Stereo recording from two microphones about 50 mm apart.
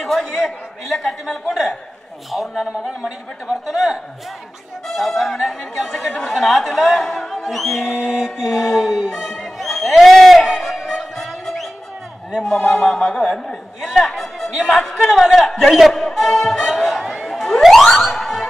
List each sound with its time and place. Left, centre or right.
0.0 s a man's voice: centre
2.3 s a man's voice: centre
7.9 s mantra: centre
8.5 s a man's voice: centre
10.4 s music: centre
12.4 s a man's voice: centre
13.0 s speech: centre
13.8 s a man's voice: centre